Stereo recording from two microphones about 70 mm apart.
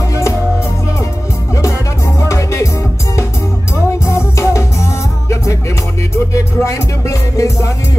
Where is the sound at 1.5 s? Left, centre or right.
Left.